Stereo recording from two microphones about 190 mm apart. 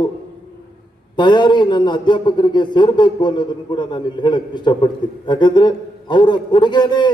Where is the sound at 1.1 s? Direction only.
25° left (ahead or behind).